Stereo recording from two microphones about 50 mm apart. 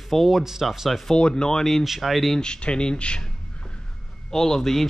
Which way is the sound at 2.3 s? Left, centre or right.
Centre.